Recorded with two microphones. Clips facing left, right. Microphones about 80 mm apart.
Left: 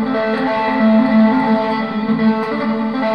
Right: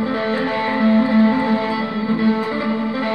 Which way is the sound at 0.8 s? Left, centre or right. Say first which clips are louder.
Left 2 dB; left.